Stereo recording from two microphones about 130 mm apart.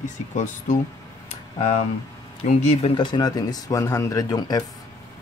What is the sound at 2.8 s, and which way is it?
Speech, 40° left (ahead or behind).